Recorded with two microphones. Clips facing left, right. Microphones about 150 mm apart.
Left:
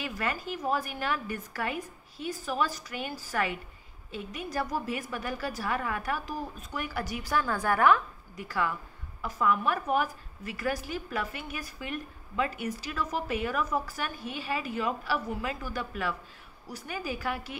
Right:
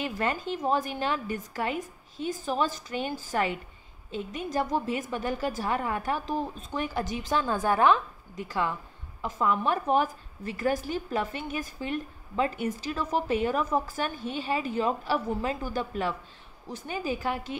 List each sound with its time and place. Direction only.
0.0 s a woman's voice: 25° right (ahead or behind)